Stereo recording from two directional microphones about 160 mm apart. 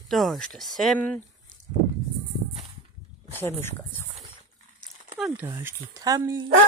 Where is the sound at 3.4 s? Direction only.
15° left (ahead or behind).